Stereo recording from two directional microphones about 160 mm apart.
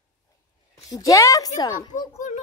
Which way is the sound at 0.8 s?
20° left (ahead or behind).